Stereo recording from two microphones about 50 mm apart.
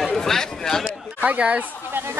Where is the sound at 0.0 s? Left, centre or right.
Centre.